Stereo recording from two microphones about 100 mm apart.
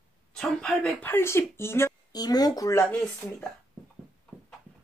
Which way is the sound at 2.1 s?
40° left (ahead or behind).